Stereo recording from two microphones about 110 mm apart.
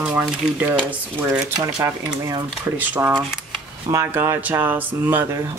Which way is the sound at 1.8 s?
35° right (ahead or behind).